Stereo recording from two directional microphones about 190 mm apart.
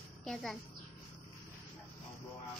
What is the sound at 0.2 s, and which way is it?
Speech, 5° left (ahead or behind).